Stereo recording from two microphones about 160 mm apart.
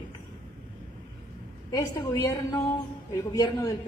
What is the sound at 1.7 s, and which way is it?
A woman's voice, 20° left (ahead or behind).